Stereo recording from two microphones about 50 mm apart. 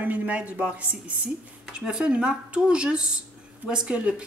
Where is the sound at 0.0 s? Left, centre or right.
Right.